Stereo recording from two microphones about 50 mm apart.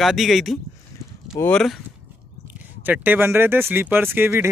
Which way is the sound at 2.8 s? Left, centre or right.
Right.